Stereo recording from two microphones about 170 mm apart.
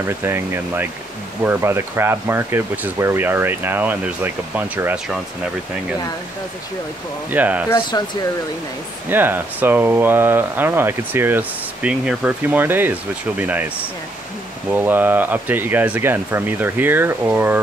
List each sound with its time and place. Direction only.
0.0 s speech: 15° right (ahead or behind)
7.2 s speech: 10° right (ahead or behind)
7.9 s speech: 20° left (ahead or behind)
9.1 s speech: 10° right (ahead or behind)
14.7 s speech: 10° right (ahead or behind)